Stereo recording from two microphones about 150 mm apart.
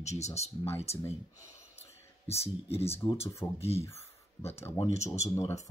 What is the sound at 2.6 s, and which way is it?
Speech, 40° left (ahead or behind).